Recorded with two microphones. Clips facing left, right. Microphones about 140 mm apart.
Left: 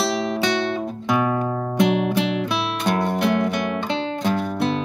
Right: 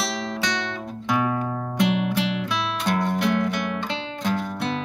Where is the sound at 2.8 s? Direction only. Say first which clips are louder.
Left 2 dB; 15° left (ahead or behind).